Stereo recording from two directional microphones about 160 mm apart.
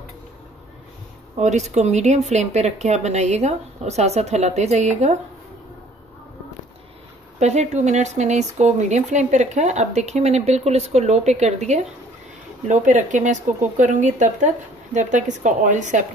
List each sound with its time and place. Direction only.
1.4 s speech: 45° right (ahead or behind)
7.3 s speech: 45° right (ahead or behind)